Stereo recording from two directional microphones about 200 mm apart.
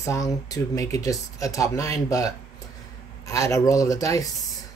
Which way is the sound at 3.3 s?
15° left (ahead or behind).